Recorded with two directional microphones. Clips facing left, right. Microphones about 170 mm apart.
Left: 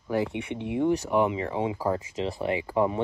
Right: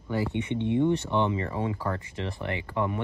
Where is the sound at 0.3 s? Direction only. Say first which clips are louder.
Right 3 dB; 70° left (ahead or behind).